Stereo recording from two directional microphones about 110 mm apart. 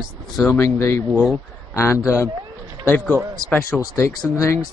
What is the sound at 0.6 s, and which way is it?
A man's voice, 20° left (ahead or behind).